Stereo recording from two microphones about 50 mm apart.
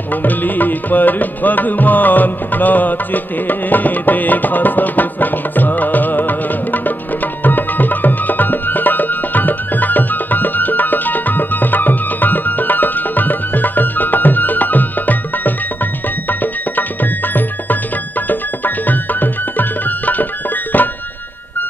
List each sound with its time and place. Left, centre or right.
0.1 s music: left